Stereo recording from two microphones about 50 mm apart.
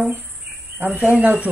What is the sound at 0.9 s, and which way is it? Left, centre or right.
Speech, right.